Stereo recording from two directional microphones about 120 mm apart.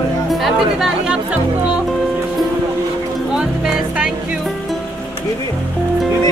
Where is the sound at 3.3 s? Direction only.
5° right (ahead or behind).